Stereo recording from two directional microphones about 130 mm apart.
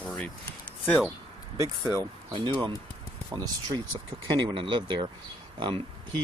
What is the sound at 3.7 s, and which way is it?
Speech, 40° right (ahead or behind).